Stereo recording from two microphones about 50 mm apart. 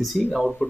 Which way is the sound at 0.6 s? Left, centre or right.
Centre.